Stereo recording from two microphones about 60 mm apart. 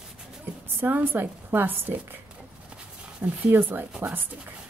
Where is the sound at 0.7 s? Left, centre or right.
Right.